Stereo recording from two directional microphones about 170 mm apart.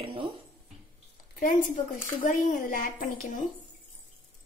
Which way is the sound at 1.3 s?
55° left (ahead or behind).